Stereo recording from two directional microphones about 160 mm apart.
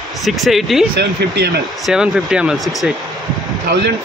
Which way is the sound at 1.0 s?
90° right.